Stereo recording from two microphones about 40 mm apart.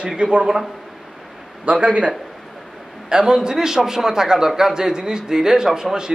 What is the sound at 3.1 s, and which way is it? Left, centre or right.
A man's voice, centre.